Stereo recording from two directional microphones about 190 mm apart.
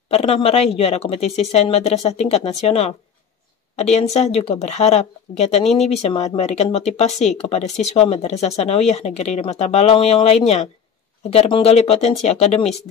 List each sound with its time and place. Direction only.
0.1 s speech: 30° left (ahead or behind)
7.1 s speech: centre (ahead or behind)
7.4 s speech: 35° left (ahead or behind)